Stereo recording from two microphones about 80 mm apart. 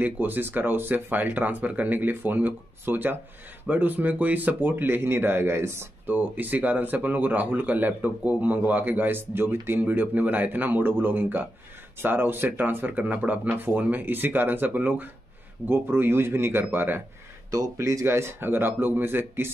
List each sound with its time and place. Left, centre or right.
0.0 s speech: right
17.5 s speech: right